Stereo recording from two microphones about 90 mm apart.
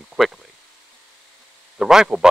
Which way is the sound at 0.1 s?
5° right (ahead or behind).